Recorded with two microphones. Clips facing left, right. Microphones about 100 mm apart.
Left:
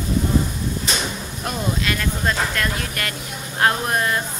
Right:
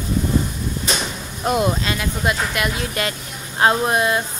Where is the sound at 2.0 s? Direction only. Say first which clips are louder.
Right 1 dB; 15° right (ahead or behind).